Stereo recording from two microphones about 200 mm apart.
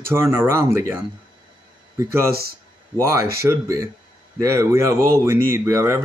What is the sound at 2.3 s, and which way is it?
Speech, 50° right (ahead or behind).